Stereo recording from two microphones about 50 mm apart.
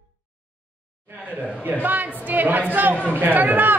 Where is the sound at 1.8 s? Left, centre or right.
Right.